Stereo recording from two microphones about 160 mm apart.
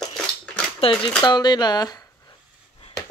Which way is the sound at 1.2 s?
25° left (ahead or behind).